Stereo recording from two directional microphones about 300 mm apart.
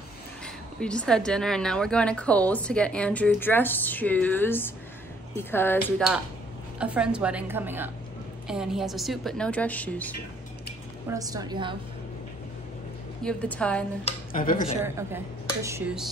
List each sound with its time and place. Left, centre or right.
0.7 s a woman's voice: centre
11.1 s speech: centre
13.2 s a woman's voice: centre
14.0 s speech: left
15.0 s speech: centre